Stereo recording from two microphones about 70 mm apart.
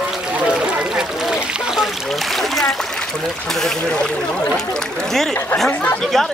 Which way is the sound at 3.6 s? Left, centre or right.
Centre.